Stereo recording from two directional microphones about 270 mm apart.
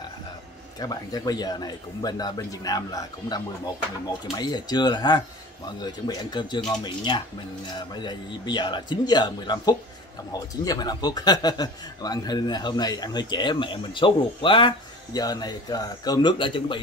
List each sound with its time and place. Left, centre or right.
0.7 s a man's voice: centre